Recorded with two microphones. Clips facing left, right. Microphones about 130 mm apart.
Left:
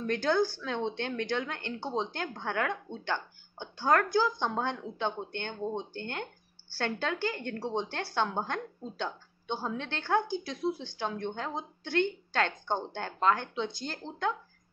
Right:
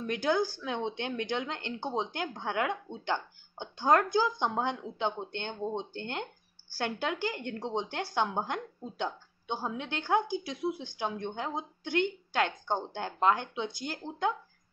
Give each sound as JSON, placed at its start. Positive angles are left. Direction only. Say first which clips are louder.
{"t": 0.0, "sound": "a woman's voice", "louder": "left 1 dB", "side_deg": -10}